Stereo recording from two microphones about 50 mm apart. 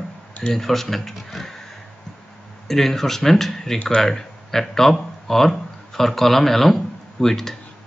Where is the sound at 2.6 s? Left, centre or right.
Centre.